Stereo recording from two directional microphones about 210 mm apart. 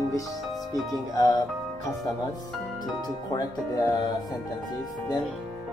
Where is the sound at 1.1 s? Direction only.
15° left (ahead or behind).